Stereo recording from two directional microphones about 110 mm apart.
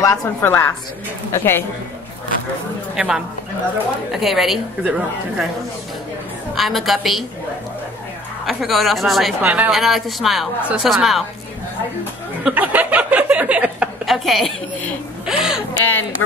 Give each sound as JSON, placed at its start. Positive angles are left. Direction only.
{"t": 0.0, "sound": "a woman's voice", "side_deg": 30}
{"t": 0.4, "sound": "a woman's voice", "side_deg": 20}
{"t": 4.1, "sound": "a woman's voice", "side_deg": 0}
{"t": 6.5, "sound": "a woman's voice", "side_deg": 0}
{"t": 8.5, "sound": "a woman's voice", "side_deg": 0}
{"t": 9.4, "sound": "speech", "side_deg": -15}
{"t": 9.7, "sound": "a woman's voice", "side_deg": 0}
{"t": 12.4, "sound": "a sound", "side_deg": -15}
{"t": 14.0, "sound": "a woman's voice", "side_deg": 0}
{"t": 15.8, "sound": "a woman's voice", "side_deg": 20}